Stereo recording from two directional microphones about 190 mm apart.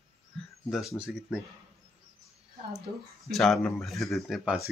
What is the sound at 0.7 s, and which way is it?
Speech, centre (ahead or behind).